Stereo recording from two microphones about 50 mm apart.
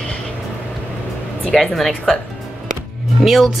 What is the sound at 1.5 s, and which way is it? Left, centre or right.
Speech, centre.